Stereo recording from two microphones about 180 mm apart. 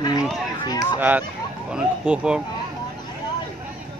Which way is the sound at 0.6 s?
20° left (ahead or behind).